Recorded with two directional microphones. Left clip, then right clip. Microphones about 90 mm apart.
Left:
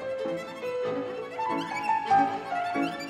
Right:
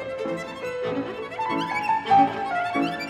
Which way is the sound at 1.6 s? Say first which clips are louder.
Right 5 dB; 50° right (ahead or behind).